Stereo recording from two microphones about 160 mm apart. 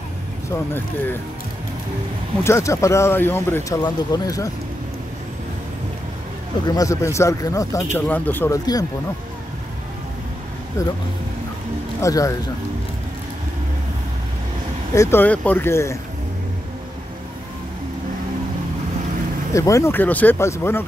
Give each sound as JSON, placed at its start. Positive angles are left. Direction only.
{"t": 0.5, "sound": "speech", "side_deg": 15}
{"t": 2.4, "sound": "speech", "side_deg": 15}
{"t": 6.7, "sound": "speech", "side_deg": 20}
{"t": 10.8, "sound": "speech", "side_deg": 20}
{"t": 12.0, "sound": "speech", "side_deg": 20}
{"t": 15.0, "sound": "speech", "side_deg": 15}
{"t": 19.5, "sound": "speech", "side_deg": 20}